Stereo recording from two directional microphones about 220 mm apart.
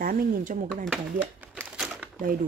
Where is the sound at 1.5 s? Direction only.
5° right (ahead or behind).